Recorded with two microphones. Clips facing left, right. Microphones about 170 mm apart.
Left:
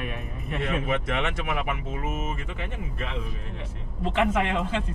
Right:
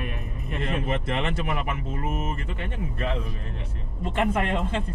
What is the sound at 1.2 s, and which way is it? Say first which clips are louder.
Speech: right 1 dB; 35° right (ahead or behind).